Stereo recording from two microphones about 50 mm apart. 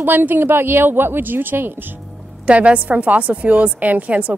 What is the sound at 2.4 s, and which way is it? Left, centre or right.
A woman's voice, right.